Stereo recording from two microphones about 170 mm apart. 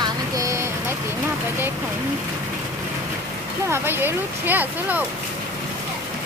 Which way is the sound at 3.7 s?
15° right (ahead or behind).